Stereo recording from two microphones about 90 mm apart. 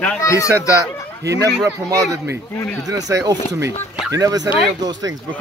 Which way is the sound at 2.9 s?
40° right (ahead or behind).